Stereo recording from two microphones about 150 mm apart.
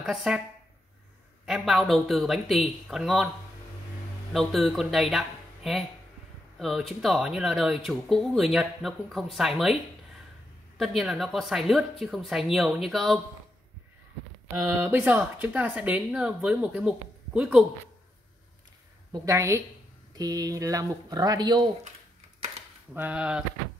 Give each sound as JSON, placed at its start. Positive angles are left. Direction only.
{"t": 0.0, "sound": "speech", "side_deg": 0}
{"t": 1.4, "sound": "speech", "side_deg": 0}
{"t": 4.3, "sound": "speech", "side_deg": 0}
{"t": 10.8, "sound": "speech", "side_deg": 0}
{"t": 14.5, "sound": "a woman's voice", "side_deg": -15}
{"t": 19.1, "sound": "speech", "side_deg": -20}
{"t": 22.9, "sound": "a woman's voice", "side_deg": -10}